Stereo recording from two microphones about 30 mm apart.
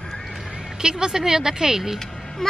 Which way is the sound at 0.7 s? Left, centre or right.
Right.